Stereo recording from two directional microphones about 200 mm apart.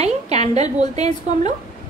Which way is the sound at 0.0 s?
35° right (ahead or behind).